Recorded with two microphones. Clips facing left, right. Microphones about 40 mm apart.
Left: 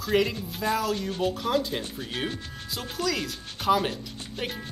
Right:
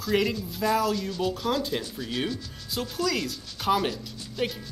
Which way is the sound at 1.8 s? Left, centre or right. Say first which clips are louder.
Right 1 dB; left.